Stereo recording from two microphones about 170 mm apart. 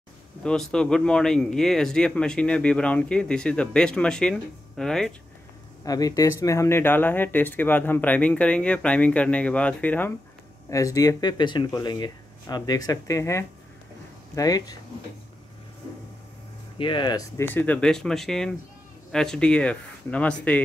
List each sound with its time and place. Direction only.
0.4 s a man's voice: 5° left (ahead or behind)
5.9 s speech: 20° left (ahead or behind)
16.7 s speech: 30° left (ahead or behind)
17.4 s a man's voice: 10° left (ahead or behind)